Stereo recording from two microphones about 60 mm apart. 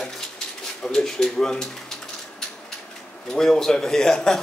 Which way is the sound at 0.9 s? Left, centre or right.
Centre.